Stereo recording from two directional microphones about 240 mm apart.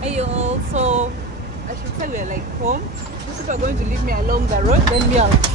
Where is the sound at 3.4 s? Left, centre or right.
Right.